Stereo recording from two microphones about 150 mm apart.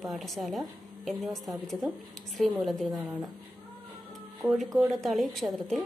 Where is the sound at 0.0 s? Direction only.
Centre (ahead or behind).